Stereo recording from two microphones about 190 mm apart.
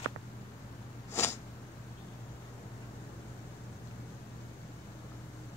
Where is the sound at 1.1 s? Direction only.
15° left (ahead or behind).